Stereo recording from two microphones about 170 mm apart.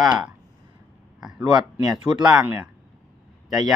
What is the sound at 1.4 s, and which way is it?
Speech, 25° right (ahead or behind).